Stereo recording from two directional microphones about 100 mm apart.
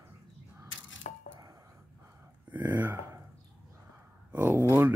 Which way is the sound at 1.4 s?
35° right (ahead or behind).